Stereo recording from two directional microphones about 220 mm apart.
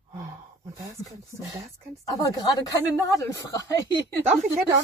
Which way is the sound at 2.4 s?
15° left (ahead or behind).